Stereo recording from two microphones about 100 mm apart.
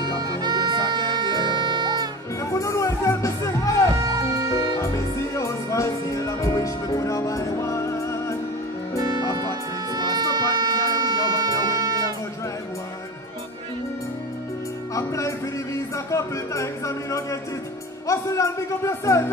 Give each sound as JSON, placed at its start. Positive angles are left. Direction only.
{"t": 0.2, "sound": "music", "side_deg": -45}
{"t": 2.5, "sound": "music", "side_deg": 30}
{"t": 3.9, "sound": "music", "side_deg": -40}
{"t": 4.7, "sound": "music", "side_deg": 30}
{"t": 9.0, "sound": "music", "side_deg": -45}
{"t": 15.0, "sound": "music", "side_deg": 30}
{"t": 18.0, "sound": "a man's voice", "side_deg": 30}